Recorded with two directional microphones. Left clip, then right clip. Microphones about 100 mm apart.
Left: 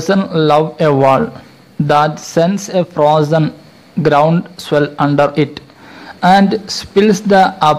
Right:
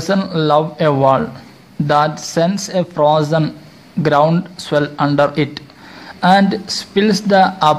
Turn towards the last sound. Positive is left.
turn(degrees=20)  # may be behind; listen again after turning